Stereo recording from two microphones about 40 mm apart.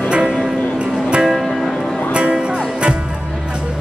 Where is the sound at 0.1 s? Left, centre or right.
Right.